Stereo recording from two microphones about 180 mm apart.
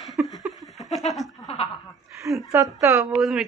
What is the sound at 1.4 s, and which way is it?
Speech, 35° left (ahead or behind).